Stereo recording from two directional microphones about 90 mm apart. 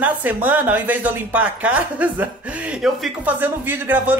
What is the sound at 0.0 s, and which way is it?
Speech, 20° right (ahead or behind).